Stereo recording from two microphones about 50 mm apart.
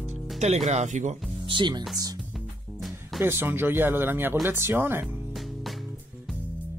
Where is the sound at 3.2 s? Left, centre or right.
Right.